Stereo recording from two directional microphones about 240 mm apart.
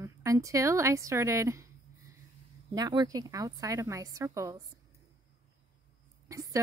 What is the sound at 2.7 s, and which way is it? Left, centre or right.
A woman's voice, centre.